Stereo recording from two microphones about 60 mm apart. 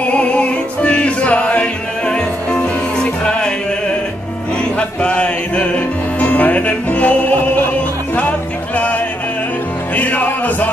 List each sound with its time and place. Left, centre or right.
0.1 s music: left
4.7 s music: centre